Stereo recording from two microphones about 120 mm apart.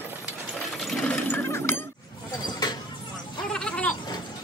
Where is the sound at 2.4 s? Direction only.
35° left (ahead or behind).